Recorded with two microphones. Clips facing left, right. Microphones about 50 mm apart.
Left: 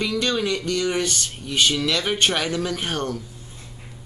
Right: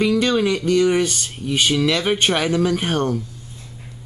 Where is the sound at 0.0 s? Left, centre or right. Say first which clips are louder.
Right 6 dB; centre.